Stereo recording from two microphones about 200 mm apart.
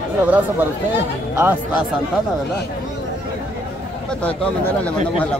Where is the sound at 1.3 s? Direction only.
10° right (ahead or behind).